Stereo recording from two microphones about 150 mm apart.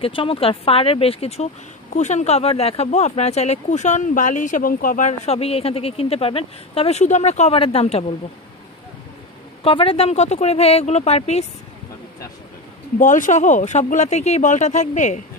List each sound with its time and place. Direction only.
0.0 s speech: 35° left (ahead or behind)
9.6 s speech: 40° left (ahead or behind)
13.0 s speech: 55° left (ahead or behind)